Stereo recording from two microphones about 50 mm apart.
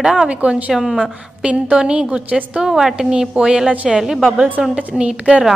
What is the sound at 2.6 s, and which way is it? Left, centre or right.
A woman's voice, centre.